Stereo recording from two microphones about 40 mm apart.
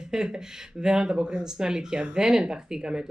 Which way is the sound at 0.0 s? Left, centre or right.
Centre.